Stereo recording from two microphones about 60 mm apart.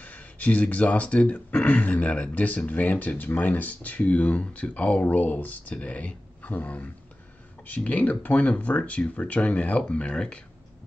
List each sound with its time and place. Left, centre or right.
0.0 s speech: left